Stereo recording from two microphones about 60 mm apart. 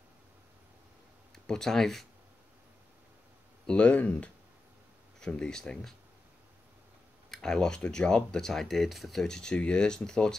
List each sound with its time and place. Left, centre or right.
1.3 s speech: centre
3.6 s speech: centre
7.2 s speech: centre